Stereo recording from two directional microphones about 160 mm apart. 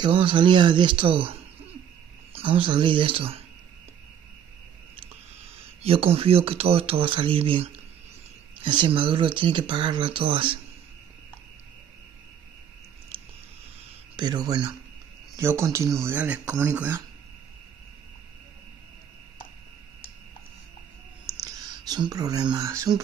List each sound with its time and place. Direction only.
0.0 s speech: 30° right (ahead or behind)
5.8 s speech: 40° right (ahead or behind)
14.1 s speech: 25° right (ahead or behind)
21.4 s speech: 25° right (ahead or behind)